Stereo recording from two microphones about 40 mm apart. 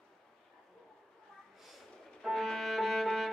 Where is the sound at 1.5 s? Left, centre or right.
Centre.